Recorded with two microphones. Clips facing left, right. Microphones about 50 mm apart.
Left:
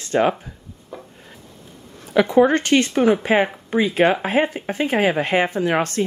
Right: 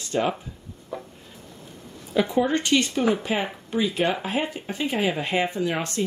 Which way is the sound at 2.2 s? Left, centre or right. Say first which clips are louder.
Left 7 dB; left.